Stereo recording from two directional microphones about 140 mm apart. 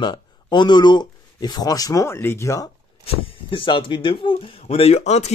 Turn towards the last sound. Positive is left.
turn(degrees=55)  # may be behind; listen again after turning